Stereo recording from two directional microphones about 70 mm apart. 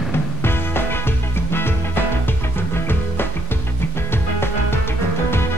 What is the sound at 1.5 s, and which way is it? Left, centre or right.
Music, left.